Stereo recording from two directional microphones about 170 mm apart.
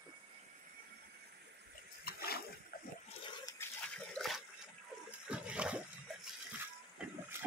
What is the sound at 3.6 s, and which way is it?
Water, 15° left (ahead or behind).